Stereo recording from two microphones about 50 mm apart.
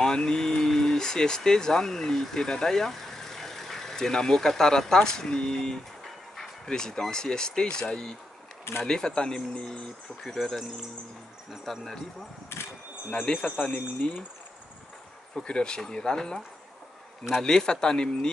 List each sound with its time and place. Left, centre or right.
0.0 s speech: centre
13.1 s speech: centre
15.3 s speech: centre